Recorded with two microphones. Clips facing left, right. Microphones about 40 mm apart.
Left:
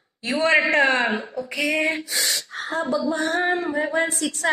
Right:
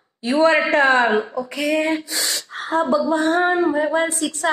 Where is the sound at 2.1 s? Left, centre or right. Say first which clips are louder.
Even; centre.